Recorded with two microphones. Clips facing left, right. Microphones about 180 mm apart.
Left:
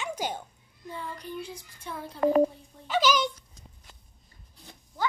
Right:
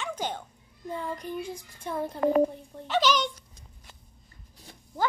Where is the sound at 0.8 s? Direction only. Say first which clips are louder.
Right 4 dB; 45° right (ahead or behind).